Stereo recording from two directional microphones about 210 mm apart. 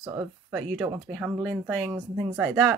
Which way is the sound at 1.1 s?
Centre (ahead or behind).